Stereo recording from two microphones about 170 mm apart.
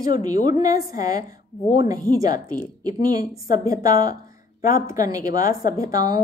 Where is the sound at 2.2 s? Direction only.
20° right (ahead or behind).